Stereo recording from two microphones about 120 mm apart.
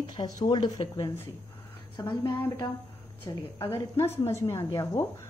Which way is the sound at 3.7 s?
20° left (ahead or behind).